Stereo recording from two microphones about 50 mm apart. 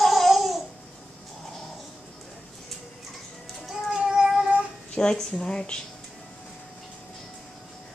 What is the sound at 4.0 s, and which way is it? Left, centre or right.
Child singing, centre.